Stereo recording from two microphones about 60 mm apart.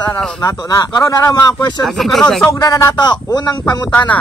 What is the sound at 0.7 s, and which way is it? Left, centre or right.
Speech, left.